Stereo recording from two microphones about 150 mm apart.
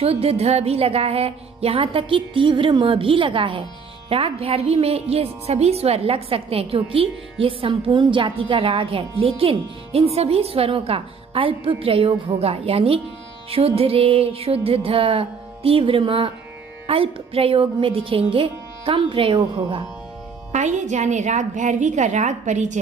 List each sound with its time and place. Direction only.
0.0 s a woman's voice: 40° right (ahead or behind)
20.5 s a woman's voice: 55° right (ahead or behind)